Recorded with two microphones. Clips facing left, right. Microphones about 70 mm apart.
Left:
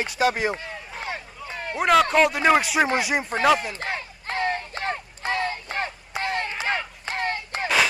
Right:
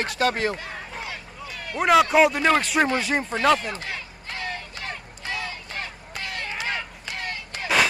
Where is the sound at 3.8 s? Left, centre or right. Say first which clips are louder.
Left 4 dB; left.